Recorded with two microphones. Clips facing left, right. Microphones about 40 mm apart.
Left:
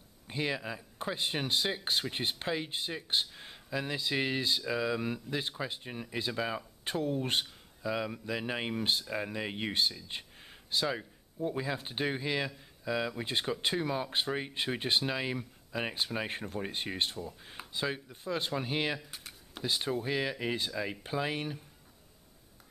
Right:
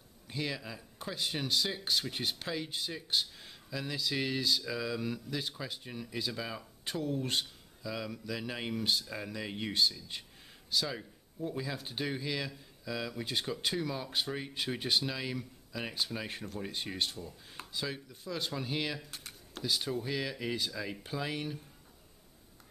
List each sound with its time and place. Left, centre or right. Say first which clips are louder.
0.3 s a man's voice: left 4 dB; left
18.9 s typing: even; centre
19.6 s a man's voice: left 2 dB; left